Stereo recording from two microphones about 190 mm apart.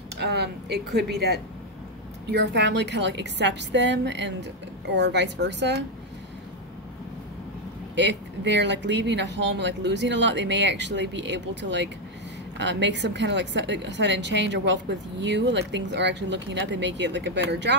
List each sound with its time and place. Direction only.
0.2 s a woman's voice: 60° right (ahead or behind)
2.3 s a woman's voice: 65° right (ahead or behind)
7.9 s a woman's voice: 70° right (ahead or behind)